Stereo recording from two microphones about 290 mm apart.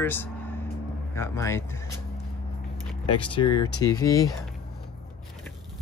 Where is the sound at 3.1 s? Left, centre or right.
Centre.